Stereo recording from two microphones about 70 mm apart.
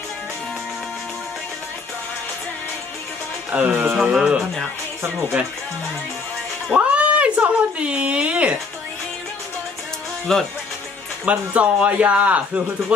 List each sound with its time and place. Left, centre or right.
3.5 s speech: centre
3.9 s speech: centre
6.7 s a sound: centre
10.3 s speech: centre
11.2 s speech: centre